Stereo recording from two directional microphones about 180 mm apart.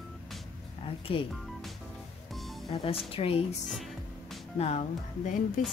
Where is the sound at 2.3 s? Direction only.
Centre (ahead or behind).